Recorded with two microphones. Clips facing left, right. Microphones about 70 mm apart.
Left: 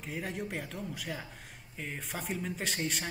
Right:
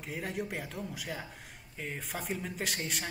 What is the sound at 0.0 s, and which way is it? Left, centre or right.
A man's voice, centre.